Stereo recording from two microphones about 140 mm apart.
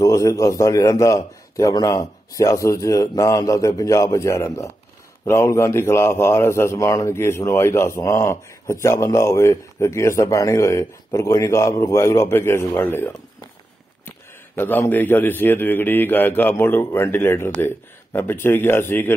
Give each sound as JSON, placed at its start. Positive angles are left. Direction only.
{"t": 0.0, "sound": "a man's voice", "side_deg": 25}